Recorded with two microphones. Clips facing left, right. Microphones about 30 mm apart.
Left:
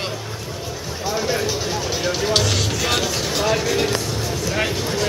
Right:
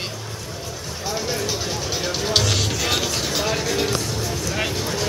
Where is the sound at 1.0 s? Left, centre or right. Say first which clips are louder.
Left 4 dB; centre.